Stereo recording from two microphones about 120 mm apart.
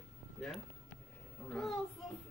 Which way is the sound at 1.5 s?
Centre (ahead or behind).